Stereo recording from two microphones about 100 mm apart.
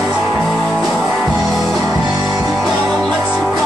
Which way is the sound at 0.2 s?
Centre (ahead or behind).